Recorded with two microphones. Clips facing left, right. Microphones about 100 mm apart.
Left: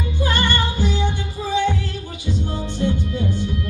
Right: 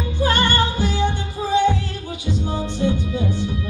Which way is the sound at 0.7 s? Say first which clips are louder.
Right 1 dB; 40° right (ahead or behind).